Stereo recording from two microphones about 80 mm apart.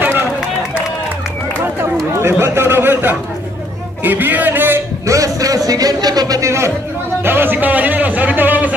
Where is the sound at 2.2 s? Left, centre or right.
Right.